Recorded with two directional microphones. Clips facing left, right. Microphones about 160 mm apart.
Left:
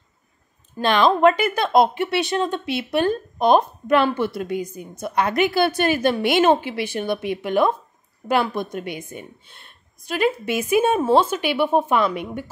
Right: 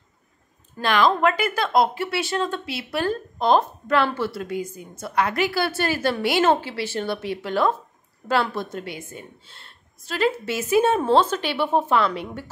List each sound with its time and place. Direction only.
0.7 s a woman's voice: 20° left (ahead or behind)